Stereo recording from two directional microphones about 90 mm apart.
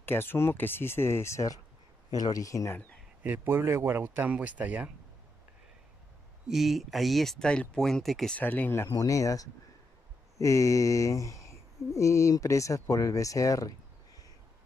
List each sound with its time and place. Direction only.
0.0 s speech: 25° left (ahead or behind)
3.2 s speech: 20° right (ahead or behind)
6.4 s speech: centre (ahead or behind)
8.4 s speech: 20° left (ahead or behind)
8.9 s speech: 40° left (ahead or behind)
10.4 s a sound: 35° left (ahead or behind)